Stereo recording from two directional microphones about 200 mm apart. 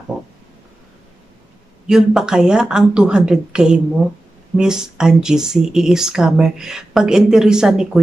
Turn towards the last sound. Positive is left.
turn(degrees=-5)  # may be behind; listen again after turning